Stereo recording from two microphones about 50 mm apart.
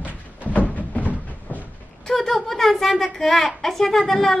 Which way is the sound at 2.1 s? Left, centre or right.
Centre.